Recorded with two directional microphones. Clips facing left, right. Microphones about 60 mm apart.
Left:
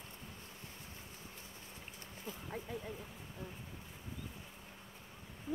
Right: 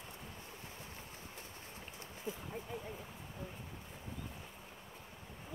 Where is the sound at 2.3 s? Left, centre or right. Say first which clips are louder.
Right 4 dB; centre.